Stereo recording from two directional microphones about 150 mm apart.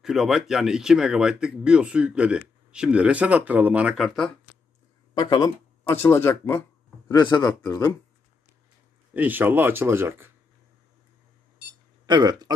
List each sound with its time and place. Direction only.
0.0 s speech: centre (ahead or behind)
5.1 s speech: 30° left (ahead or behind)
5.9 s speech: 15° left (ahead or behind)
7.2 s speech: 30° left (ahead or behind)
9.1 s speech: 10° right (ahead or behind)
12.1 s speech: 25° right (ahead or behind)